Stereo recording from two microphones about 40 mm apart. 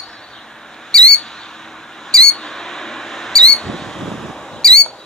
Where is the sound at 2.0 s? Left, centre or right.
Centre.